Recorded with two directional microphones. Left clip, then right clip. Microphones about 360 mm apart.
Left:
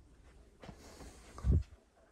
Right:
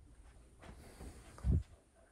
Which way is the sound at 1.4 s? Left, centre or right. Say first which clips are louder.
Left 4 dB; centre.